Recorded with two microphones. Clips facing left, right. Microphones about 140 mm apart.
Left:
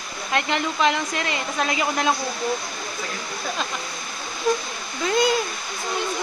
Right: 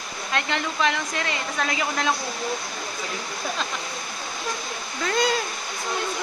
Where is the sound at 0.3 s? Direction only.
20° left (ahead or behind).